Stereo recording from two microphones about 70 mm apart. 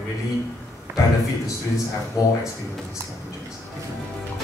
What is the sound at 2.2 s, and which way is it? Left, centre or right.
Speech, left.